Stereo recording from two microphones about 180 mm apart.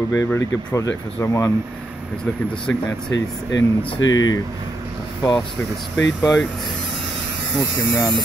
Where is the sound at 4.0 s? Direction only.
90° left.